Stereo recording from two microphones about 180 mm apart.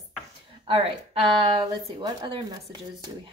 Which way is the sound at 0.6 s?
30° right (ahead or behind).